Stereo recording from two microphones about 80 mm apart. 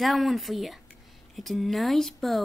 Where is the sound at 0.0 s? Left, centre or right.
Centre.